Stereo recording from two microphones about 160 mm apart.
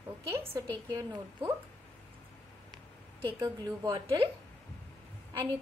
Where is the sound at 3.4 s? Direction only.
25° right (ahead or behind).